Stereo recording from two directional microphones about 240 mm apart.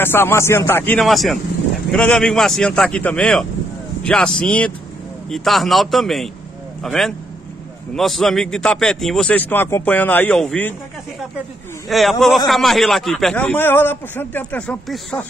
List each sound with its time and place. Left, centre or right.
0.0 s a man's voice: centre
11.9 s a man's voice: centre